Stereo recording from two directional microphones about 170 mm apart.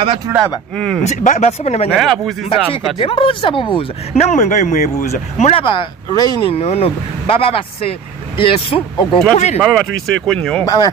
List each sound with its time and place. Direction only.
0.3 s speech: 15° right (ahead or behind)
1.0 s speech: 45° left (ahead or behind)
2.0 s speech: centre (ahead or behind)
3.0 s speech: 30° left (ahead or behind)
6.5 s speech: 35° left (ahead or behind)
9.6 s speech: centre (ahead or behind)
10.6 s speech: 25° left (ahead or behind)